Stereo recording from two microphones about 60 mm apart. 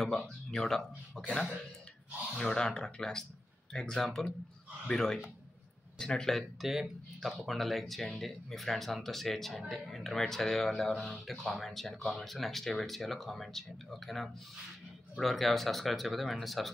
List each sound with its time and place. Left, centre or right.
0.0 s speech: centre
2.3 s speech: centre